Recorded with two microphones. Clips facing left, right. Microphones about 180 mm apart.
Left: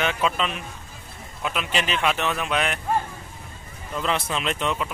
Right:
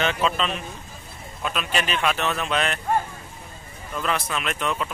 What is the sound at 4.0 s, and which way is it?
Speech, 25° left (ahead or behind).